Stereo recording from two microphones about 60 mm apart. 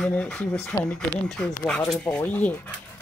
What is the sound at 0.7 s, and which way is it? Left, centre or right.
Speech, left.